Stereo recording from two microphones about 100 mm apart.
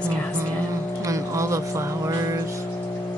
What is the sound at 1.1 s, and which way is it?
Speech, 30° right (ahead or behind).